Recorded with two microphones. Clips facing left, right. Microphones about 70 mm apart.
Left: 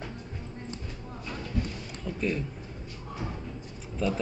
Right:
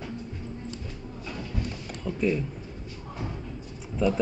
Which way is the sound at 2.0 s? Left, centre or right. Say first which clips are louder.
Right 4 dB; centre.